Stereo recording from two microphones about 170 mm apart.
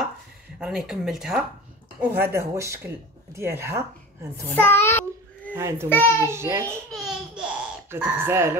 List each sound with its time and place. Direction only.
0.6 s speech: centre (ahead or behind)
2.0 s speech: 15° right (ahead or behind)
4.6 s child singing: 10° left (ahead or behind)
5.5 s a child's voice: 15° right (ahead or behind)
5.9 s a child's voice: 15° left (ahead or behind)
6.2 s speech: 15° right (ahead or behind)
6.9 s baby laughter: centre (ahead or behind)